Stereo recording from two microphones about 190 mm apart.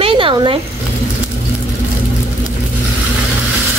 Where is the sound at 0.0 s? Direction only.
25° right (ahead or behind).